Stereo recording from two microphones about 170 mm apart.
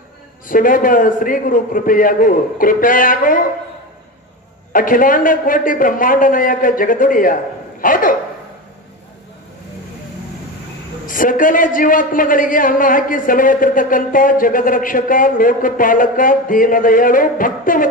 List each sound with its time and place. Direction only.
0.5 s a man's voice: 55° left (ahead or behind)
4.7 s a man's voice: 55° left (ahead or behind)
7.8 s a sound: 55° left (ahead or behind)
11.1 s a man's voice: 55° left (ahead or behind)